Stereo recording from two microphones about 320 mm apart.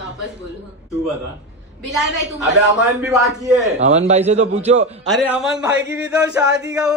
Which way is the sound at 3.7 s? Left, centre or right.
Right.